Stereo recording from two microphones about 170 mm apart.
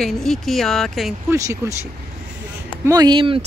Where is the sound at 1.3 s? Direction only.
20° right (ahead or behind).